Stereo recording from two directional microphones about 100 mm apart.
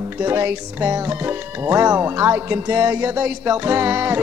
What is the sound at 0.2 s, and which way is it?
Music, 25° right (ahead or behind).